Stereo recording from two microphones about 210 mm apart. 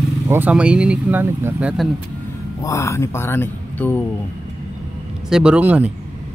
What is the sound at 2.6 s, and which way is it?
Speech, 15° left (ahead or behind).